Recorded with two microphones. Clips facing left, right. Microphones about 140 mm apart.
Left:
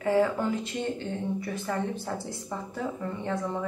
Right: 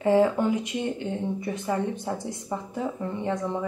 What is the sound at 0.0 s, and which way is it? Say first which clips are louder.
Speech: right 4 dB; 20° right (ahead or behind).